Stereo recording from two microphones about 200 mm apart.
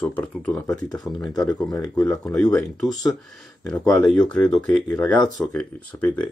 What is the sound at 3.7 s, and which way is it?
Speech, 5° left (ahead or behind).